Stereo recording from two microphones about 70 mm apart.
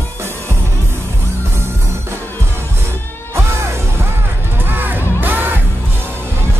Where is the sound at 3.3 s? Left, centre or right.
Right.